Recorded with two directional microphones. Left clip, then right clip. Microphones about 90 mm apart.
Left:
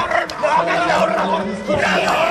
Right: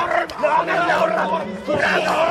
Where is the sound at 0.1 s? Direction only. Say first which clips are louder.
Left 1 dB; 35° left (ahead or behind).